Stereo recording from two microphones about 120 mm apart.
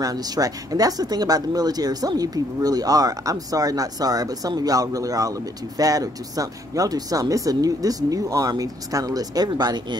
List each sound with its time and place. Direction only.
0.0 s speech: 30° right (ahead or behind)